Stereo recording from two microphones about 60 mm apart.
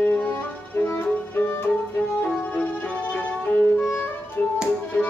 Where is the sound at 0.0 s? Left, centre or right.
Left.